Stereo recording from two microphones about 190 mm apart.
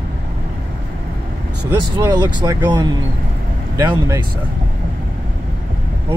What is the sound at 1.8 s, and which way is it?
Speech, 20° right (ahead or behind).